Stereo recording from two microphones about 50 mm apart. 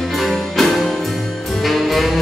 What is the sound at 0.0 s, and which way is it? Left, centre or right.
Music, centre.